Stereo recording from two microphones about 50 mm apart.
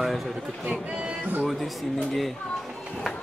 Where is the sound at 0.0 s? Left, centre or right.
Centre.